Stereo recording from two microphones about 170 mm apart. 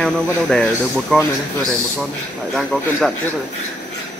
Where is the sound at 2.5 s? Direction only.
Centre (ahead or behind).